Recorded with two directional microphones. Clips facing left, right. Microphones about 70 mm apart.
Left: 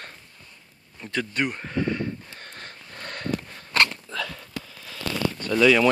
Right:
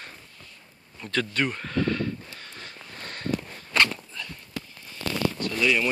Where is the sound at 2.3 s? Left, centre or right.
Left.